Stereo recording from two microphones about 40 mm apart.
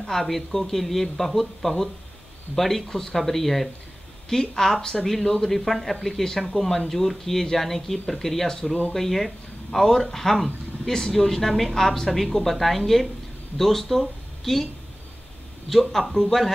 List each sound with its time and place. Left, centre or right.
0.0 s speech: centre
4.7 s speech: left
5.0 s speech: centre
15.7 s speech: centre